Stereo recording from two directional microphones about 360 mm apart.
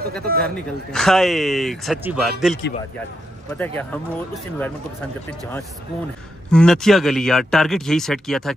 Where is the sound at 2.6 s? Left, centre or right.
Left.